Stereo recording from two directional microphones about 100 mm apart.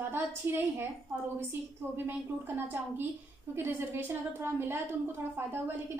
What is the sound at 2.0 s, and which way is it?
A woman's voice, 20° right (ahead or behind).